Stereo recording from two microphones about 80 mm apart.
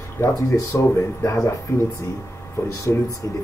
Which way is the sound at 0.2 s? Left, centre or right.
Left.